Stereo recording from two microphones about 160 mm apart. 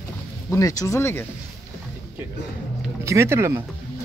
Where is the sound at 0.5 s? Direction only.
20° left (ahead or behind).